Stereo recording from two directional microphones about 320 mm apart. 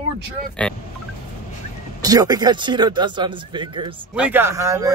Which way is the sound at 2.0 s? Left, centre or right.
Centre.